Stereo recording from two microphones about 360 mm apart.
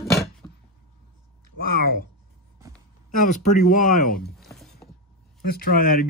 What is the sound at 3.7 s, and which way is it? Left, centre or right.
Speech, left.